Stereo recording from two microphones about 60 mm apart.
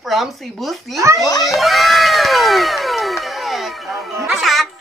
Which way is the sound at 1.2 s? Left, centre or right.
Left.